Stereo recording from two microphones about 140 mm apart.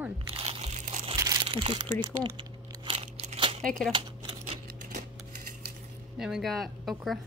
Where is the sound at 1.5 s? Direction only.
40° right (ahead or behind).